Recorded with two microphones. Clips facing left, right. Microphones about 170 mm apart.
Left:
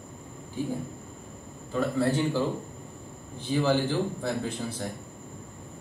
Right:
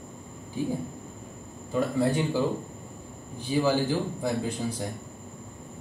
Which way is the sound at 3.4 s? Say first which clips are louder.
Even; 10° right (ahead or behind).